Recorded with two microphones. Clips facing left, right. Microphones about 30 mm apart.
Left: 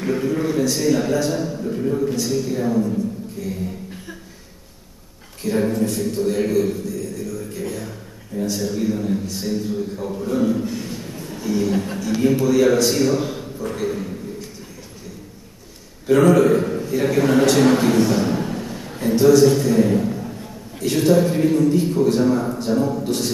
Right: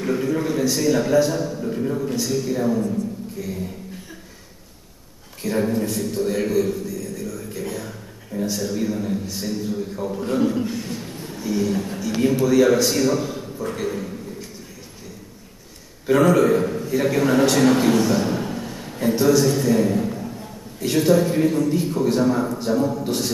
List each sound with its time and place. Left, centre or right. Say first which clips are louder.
0.0 s a man's voice: left 1 dB; centre
5.4 s a man's voice: left 2 dB; centre
10.2 s a man's voice: left 1 dB; right
10.8 s speech: even; centre
11.2 s a sound: left 2 dB; centre
11.7 s a man's voice: left 3 dB; centre
12.1 s a man's voice: left 1 dB; centre
13.2 s a sound: left 2 dB; centre
13.6 s a sound: left 1 dB; centre
16.1 s a man's voice: left 2 dB; centre
18.1 s a sound: left 1 dB; centre
20.8 s a man's voice: left 1 dB; centre